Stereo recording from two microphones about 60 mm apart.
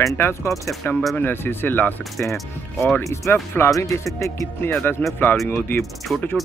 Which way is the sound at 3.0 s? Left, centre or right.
Left.